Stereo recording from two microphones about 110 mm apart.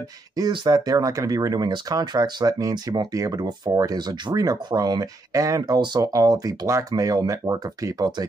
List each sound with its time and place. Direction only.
0.4 s speech: 35° right (ahead or behind)